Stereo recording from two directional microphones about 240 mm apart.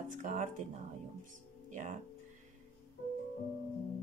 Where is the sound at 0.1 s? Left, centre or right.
Right.